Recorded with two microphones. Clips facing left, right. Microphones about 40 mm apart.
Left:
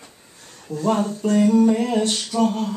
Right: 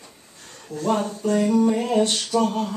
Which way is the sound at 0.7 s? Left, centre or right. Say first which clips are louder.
Left 3 dB; left.